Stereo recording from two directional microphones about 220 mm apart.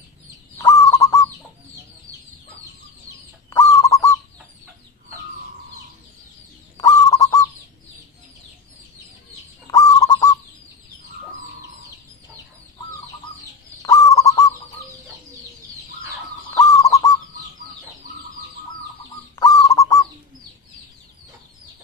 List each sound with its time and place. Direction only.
0.6 s goose: 15° left (ahead or behind)
3.4 s bird: 15° left (ahead or behind)
6.8 s bird: 15° left (ahead or behind)
9.7 s bird: 15° left (ahead or behind)
13.8 s bird: 15° left (ahead or behind)
16.5 s bird: 15° left (ahead or behind)
19.3 s bird: 15° left (ahead or behind)